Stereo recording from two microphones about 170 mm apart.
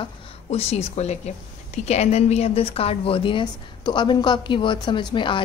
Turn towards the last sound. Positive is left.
turn(degrees=30)  # may be behind; listen again after turning